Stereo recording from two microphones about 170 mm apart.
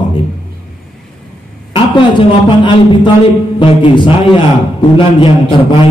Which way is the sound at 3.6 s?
30° left (ahead or behind).